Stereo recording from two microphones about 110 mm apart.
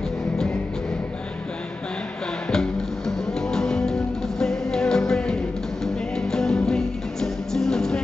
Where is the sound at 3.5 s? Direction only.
5° left (ahead or behind).